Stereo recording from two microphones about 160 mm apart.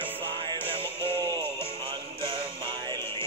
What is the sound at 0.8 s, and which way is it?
Music, 30° right (ahead or behind).